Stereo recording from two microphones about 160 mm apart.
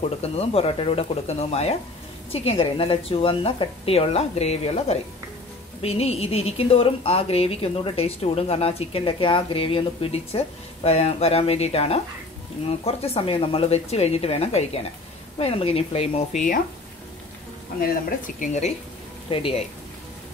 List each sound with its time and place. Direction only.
0.2 s a woman's voice: 40° left (ahead or behind)
18.4 s speech: 45° left (ahead or behind)
19.2 s speech: 35° left (ahead or behind)